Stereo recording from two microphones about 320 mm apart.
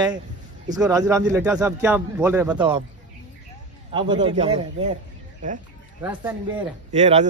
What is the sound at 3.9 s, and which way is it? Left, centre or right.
A man's voice, centre.